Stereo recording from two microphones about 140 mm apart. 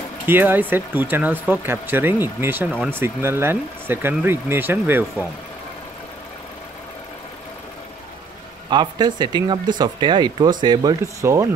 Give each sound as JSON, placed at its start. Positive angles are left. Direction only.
{"t": 0.3, "sound": "speech", "side_deg": -15}
{"t": 8.6, "sound": "speech", "side_deg": -35}